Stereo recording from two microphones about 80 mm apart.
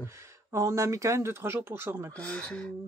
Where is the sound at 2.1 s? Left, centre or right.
Centre.